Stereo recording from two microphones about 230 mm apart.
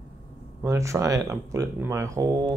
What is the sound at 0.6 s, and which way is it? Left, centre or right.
Speech, centre.